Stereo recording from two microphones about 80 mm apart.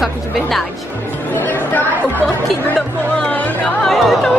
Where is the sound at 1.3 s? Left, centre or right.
Left.